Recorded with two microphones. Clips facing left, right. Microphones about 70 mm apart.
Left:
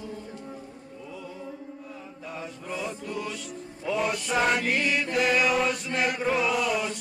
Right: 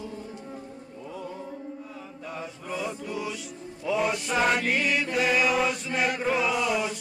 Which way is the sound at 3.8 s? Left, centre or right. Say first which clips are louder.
Right 1 dB; centre.